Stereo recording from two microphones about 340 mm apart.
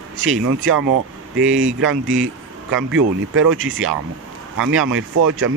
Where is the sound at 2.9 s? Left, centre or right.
Right.